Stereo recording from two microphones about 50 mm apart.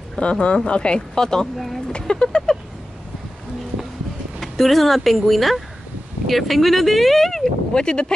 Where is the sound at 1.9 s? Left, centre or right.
Centre.